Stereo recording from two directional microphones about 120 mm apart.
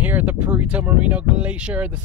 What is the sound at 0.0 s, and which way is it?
Speech, 15° right (ahead or behind).